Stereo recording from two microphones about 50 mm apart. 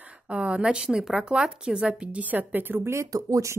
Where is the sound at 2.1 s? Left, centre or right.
Right.